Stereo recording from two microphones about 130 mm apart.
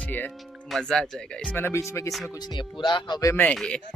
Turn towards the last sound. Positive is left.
turn(degrees=5)  # may be behind; listen again after turning